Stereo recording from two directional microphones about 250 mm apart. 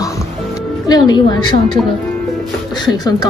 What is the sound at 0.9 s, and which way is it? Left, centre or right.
Speech, centre.